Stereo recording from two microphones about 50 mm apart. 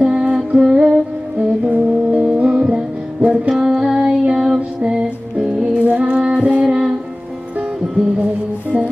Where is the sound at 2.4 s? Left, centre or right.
Centre.